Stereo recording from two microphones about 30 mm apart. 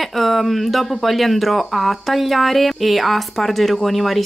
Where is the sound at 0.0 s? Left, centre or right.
Centre.